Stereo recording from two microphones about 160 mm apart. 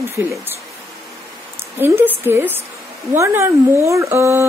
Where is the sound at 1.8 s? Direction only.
15° right (ahead or behind).